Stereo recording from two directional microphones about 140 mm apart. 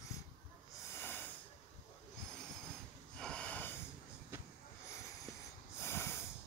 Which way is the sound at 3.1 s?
5° left (ahead or behind).